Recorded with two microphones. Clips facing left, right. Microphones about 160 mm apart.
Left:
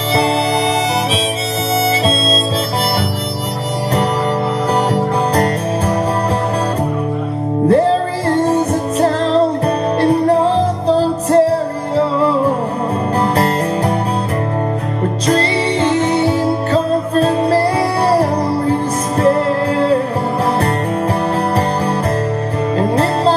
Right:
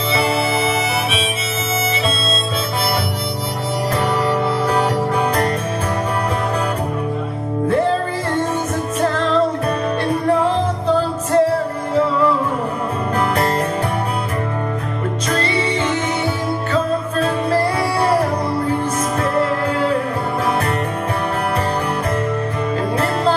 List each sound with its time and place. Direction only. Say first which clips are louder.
7.6 s music: left 5 dB; 35° left (ahead or behind)
15.2 s music: left 5 dB; 35° left (ahead or behind)
19.2 s music: left 7 dB; 35° left (ahead or behind)
22.8 s music: left 6 dB; 35° left (ahead or behind)